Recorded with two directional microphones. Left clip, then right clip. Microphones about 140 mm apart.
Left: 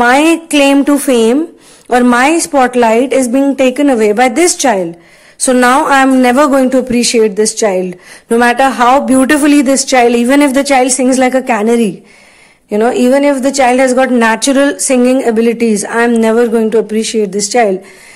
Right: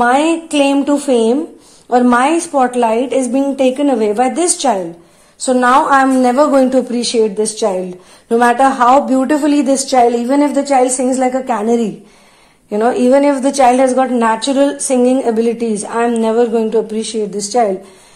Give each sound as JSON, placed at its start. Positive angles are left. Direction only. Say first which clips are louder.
{"t": 0.0, "sound": "a woman's voice", "louder": "left 4 dB", "side_deg": 25}
{"t": 5.4, "sound": "a woman's voice", "louder": "left 2 dB", "side_deg": 45}
{"t": 8.5, "sound": "a woman's voice", "louder": "left 1 dB", "side_deg": 35}
{"t": 9.6, "sound": "a woman's voice", "louder": "left 3 dB", "side_deg": 30}